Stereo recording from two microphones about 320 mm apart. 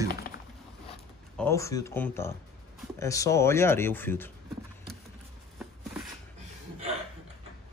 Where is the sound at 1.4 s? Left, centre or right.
Centre.